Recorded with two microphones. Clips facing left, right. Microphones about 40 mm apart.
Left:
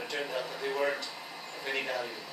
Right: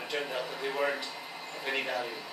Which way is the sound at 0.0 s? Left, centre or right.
Centre.